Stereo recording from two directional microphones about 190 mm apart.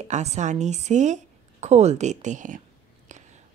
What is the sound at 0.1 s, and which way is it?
A woman's voice, 35° right (ahead or behind).